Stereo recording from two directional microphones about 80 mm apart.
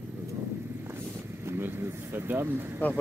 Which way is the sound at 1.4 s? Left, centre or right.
Right.